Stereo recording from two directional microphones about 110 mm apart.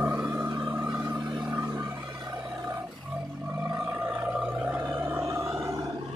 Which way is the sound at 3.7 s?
20° right (ahead or behind).